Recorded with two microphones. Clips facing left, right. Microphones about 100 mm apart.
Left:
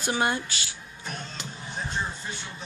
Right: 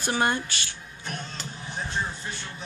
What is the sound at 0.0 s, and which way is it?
Speech, 15° left (ahead or behind).